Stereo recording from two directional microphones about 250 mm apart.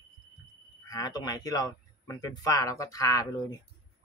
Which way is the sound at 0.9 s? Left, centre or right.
Centre.